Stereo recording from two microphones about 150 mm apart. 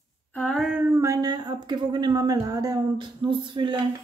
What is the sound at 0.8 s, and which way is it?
Speech, 20° right (ahead or behind).